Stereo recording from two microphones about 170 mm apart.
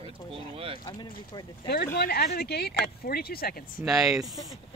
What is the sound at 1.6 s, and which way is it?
Speech, 60° left (ahead or behind).